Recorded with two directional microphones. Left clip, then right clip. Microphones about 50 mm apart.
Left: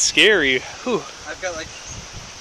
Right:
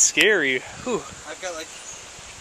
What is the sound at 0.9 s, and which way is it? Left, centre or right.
Speech, left.